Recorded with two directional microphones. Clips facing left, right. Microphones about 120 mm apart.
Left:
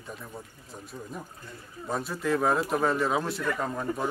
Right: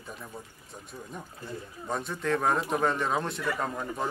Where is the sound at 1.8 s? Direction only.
5° left (ahead or behind).